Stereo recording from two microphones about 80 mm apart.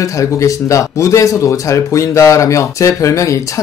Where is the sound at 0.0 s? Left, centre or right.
Left.